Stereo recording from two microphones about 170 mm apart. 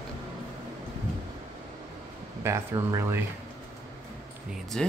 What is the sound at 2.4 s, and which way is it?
Speech, 15° right (ahead or behind).